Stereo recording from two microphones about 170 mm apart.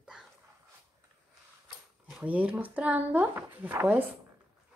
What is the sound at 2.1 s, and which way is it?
Speech, 10° right (ahead or behind).